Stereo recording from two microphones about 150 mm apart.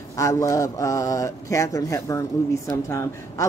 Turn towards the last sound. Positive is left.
turn(degrees=20)  # may be behind; listen again after turning